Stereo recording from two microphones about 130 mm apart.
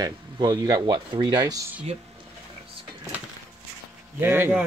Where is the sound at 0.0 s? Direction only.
30° right (ahead or behind).